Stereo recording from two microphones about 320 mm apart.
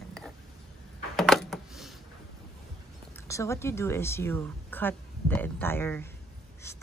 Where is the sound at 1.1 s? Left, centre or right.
Centre.